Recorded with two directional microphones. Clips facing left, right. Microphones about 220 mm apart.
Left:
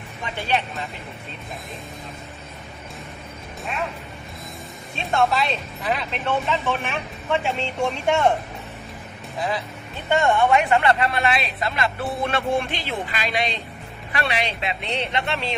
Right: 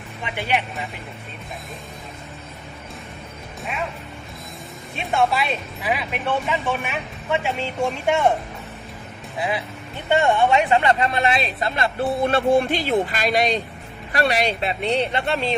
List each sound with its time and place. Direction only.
0.2 s speech: 15° right (ahead or behind)
5.0 s speech: 5° right (ahead or behind)
10.0 s speech: 15° right (ahead or behind); by 15.4 s 35° right (ahead or behind)